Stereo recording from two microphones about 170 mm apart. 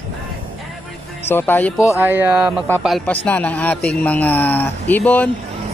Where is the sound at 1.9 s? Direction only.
10° right (ahead or behind).